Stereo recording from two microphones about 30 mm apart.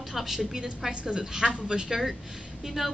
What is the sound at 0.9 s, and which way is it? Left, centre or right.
A woman's voice, right.